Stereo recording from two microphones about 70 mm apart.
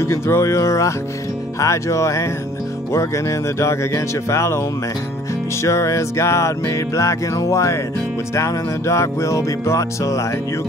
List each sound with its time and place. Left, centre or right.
0.0 s music: left